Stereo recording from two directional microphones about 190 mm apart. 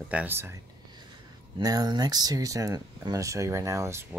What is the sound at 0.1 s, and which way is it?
Speech, 10° right (ahead or behind).